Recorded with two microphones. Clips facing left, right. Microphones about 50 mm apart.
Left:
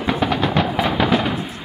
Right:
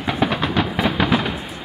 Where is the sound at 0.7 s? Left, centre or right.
Centre.